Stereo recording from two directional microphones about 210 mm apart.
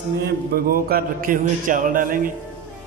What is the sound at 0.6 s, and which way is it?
Music, 45° right (ahead or behind).